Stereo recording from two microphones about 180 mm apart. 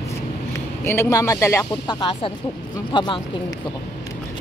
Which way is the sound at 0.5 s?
15° left (ahead or behind).